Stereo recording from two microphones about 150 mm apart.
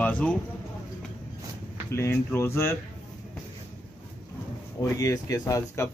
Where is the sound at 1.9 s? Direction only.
15° left (ahead or behind).